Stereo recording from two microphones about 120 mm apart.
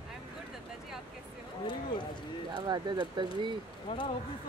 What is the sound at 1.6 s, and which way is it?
Speech, 40° left (ahead or behind).